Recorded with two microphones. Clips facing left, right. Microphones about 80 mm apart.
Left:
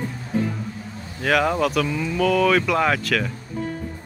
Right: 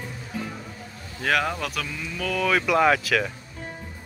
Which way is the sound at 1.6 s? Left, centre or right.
Centre.